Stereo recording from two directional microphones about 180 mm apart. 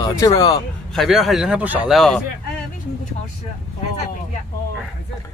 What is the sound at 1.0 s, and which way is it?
Speech, centre (ahead or behind).